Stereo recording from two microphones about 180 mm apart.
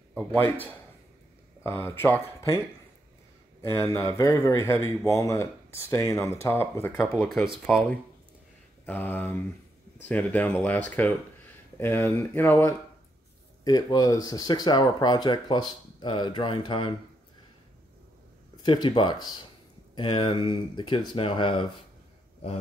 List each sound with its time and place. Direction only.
0.1 s a man's voice: 5° left (ahead or behind)
3.7 s speech: 15° left (ahead or behind)
7.6 s speech: 5° left (ahead or behind)
13.7 s speech: 20° left (ahead or behind)
18.6 s speech: 25° left (ahead or behind)